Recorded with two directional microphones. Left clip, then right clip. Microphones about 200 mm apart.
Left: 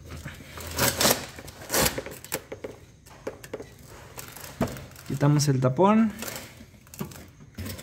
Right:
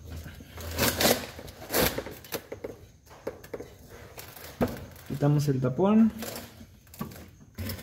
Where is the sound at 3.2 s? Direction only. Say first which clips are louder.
Left 1 dB; 35° left (ahead or behind).